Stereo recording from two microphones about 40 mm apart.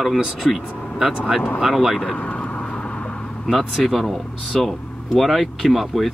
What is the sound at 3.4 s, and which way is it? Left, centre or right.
Speech, centre.